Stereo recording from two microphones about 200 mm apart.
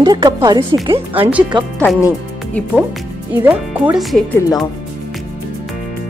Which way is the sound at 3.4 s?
5° right (ahead or behind).